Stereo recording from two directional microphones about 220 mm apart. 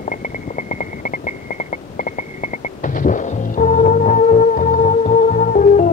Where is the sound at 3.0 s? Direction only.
35° left (ahead or behind).